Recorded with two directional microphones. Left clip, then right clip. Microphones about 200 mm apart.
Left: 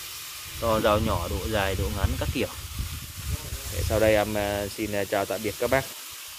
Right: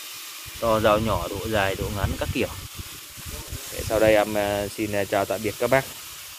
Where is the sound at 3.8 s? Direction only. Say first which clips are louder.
Right 3 dB; 5° right (ahead or behind).